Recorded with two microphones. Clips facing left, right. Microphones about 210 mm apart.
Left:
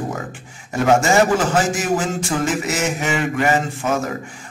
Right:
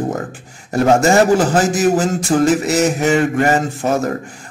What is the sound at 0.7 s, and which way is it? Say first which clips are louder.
A man's voice: right 3 dB; 40° right (ahead or behind).